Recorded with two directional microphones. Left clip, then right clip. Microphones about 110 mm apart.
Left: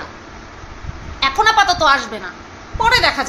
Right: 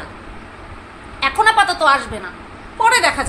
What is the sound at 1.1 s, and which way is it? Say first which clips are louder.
A woman's voice: even; 15° left (ahead or behind).